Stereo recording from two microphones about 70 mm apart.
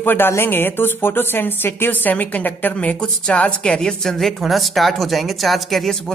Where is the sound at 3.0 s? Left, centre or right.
Centre.